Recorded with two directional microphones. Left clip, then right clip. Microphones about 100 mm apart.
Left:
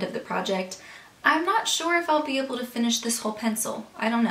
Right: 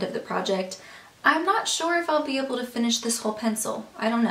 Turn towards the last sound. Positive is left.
turn(degrees=-5)  # may be behind; listen again after turning